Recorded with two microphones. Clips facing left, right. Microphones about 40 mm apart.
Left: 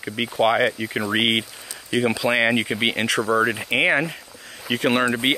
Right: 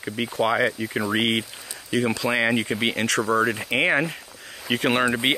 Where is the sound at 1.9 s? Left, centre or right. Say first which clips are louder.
Left 2 dB; centre.